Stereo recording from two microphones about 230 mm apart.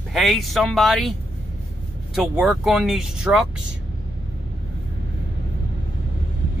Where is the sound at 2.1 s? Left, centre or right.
Centre.